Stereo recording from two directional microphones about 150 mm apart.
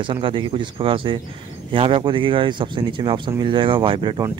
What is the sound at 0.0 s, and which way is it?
Speech, 35° right (ahead or behind).